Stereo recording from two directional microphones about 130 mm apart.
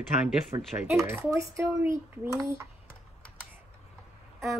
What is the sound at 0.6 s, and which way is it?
Speech, centre (ahead or behind).